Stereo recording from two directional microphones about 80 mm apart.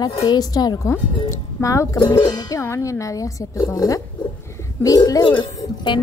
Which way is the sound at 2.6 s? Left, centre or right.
Left.